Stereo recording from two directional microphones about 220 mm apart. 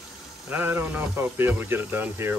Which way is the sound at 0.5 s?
10° right (ahead or behind).